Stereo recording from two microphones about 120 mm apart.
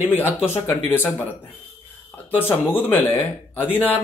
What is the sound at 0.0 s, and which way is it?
Speech, 15° left (ahead or behind).